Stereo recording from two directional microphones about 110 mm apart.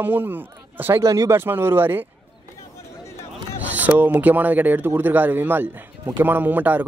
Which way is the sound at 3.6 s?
15° right (ahead or behind).